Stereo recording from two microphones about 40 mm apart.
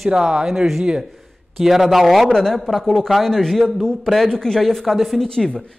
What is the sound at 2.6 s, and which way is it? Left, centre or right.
Speech, centre.